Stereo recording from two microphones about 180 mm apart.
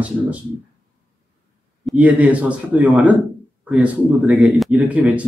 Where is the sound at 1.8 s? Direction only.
5° right (ahead or behind).